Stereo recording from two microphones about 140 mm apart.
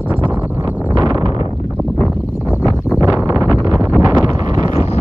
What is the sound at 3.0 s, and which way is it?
Wind noise, 25° right (ahead or behind).